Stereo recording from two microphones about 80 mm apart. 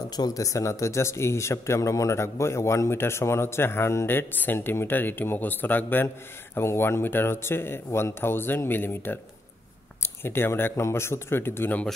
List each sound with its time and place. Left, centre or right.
0.1 s speech: left